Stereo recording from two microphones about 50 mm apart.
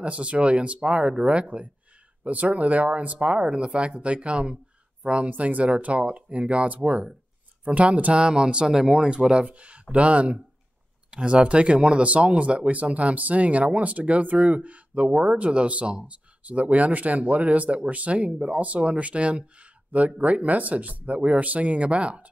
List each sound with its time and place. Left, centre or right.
0.0 s speech: right